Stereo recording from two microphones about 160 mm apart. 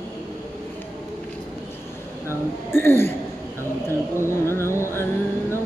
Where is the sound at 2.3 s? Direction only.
15° left (ahead or behind).